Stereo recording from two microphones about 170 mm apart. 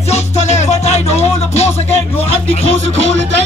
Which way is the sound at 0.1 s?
40° left (ahead or behind).